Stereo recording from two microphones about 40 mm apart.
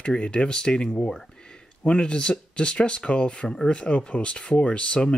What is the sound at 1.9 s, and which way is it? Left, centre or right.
Speech, left.